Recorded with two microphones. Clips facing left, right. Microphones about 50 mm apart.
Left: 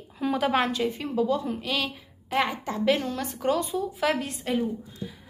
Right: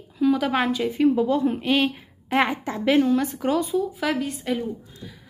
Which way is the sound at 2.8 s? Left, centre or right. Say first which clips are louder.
Right 7 dB; centre.